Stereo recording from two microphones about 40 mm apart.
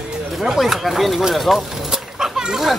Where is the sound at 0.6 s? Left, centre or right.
Centre.